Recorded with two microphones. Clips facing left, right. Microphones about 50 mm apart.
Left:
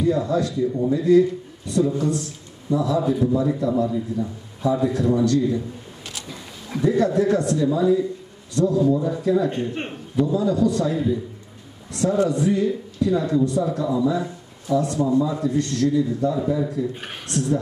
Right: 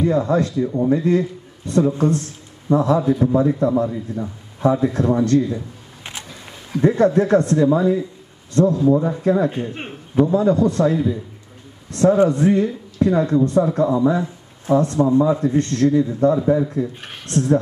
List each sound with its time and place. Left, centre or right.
0.0 s a man's voice: right
6.8 s a man's voice: right
9.5 s a man's voice: centre
10.1 s a man's voice: right